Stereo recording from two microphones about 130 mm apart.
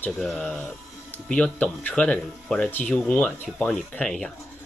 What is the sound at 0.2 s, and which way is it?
Speech, centre (ahead or behind).